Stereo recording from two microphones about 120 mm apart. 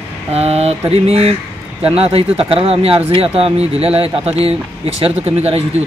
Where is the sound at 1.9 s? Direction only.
55° right (ahead or behind).